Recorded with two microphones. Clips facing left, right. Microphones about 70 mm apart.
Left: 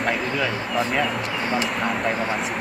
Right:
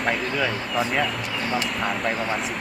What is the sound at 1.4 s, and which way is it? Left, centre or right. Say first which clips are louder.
Speech: left 1 dB; left.